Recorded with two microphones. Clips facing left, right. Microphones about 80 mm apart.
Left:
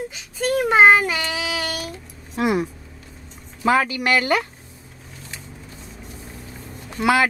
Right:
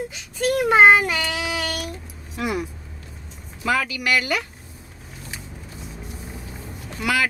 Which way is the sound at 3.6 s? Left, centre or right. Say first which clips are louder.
Left 4 dB; left.